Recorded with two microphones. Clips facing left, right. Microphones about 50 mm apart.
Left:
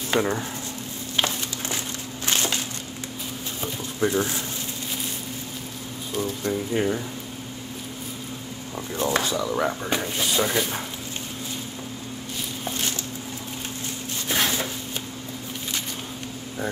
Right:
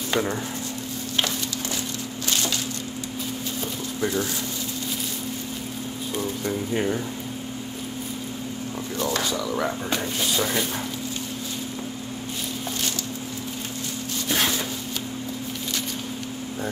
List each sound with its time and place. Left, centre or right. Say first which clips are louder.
0.1 s speech: left 2 dB; centre
2.2 s a sound: left 2 dB; left
4.0 s speech: left 3 dB; left
6.1 s speech: left 2 dB; centre
8.9 s speech: left 2 dB; left
9.4 s speech: left 1 dB; centre